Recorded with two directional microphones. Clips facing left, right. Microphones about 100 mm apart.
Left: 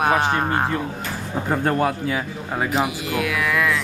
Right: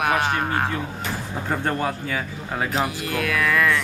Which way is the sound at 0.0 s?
25° left (ahead or behind).